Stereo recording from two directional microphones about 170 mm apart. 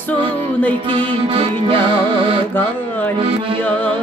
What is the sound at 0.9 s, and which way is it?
Music, 30° right (ahead or behind).